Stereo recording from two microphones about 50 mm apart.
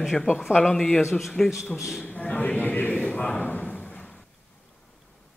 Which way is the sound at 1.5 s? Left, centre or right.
Centre.